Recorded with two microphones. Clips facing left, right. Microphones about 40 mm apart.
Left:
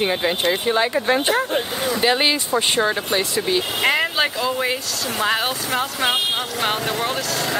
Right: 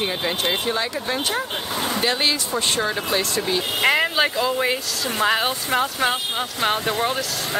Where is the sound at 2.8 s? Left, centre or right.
Centre.